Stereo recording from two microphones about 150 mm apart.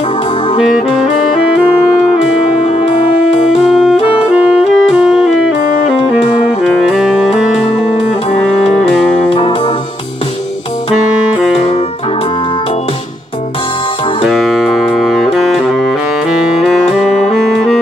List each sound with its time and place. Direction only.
2.6 s music: 45° left (ahead or behind)
3.6 s music: centre (ahead or behind)
6.6 s music: centre (ahead or behind)
8.3 s music: 40° left (ahead or behind)
14.3 s music: centre (ahead or behind)
17.3 s music: centre (ahead or behind)